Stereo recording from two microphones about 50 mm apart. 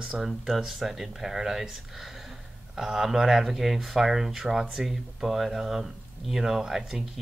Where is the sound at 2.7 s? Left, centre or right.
Centre.